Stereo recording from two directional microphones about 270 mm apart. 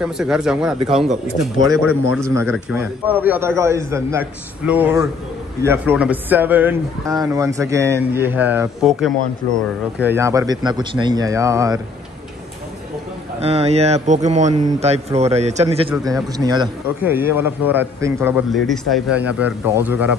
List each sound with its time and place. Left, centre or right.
0.0 s speech: centre
2.1 s a man's voice: centre
13.4 s a man's voice: right; by 20.2 s centre